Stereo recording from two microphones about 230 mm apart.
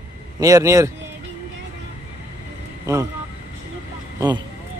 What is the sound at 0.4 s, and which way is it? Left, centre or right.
Speech, centre.